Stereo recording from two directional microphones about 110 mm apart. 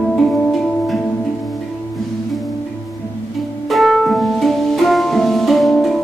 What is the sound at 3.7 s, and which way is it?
Music, centre (ahead or behind).